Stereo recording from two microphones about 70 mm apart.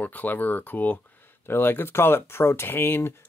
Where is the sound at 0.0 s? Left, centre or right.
Left.